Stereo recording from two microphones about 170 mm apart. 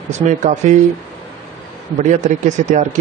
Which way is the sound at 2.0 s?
45° right (ahead or behind).